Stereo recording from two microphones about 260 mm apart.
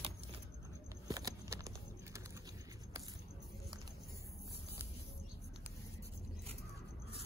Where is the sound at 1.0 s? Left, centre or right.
Centre.